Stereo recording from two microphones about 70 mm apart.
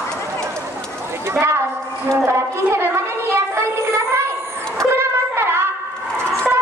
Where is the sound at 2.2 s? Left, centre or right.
Right.